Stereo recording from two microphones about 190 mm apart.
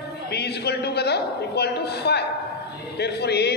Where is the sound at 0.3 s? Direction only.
60° left (ahead or behind).